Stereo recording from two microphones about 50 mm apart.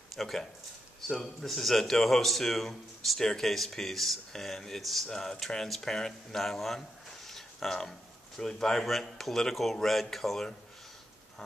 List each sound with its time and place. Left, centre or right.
0.1 s speech: centre
7.2 s a sound: centre
8.4 s speech: centre